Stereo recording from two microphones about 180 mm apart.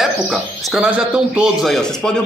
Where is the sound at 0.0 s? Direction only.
Centre (ahead or behind).